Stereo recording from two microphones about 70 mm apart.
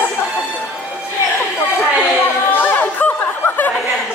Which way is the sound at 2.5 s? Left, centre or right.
Left.